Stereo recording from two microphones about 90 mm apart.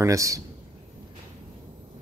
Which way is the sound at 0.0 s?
35° right (ahead or behind).